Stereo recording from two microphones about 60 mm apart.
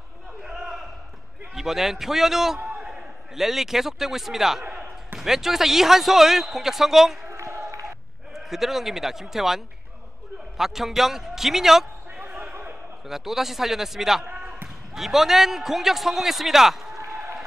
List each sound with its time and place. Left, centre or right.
0.4 s a sound: centre
1.5 s a man's voice: centre
4.6 s speech: centre
7.2 s a sound: right
7.8 s bleat: centre
10.6 s a man's voice: centre
12.3 s basketball bounce: centre
13.0 s a man's voice: centre
14.3 s basketball bounce: centre
15.0 s a man's voice: centre